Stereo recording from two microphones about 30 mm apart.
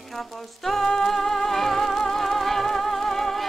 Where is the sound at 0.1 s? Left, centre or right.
Centre.